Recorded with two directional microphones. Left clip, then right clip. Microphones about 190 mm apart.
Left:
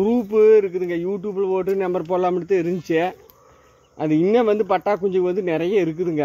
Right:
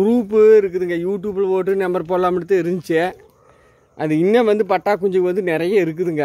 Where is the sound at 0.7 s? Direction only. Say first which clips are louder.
Right 3 dB; 60° right (ahead or behind).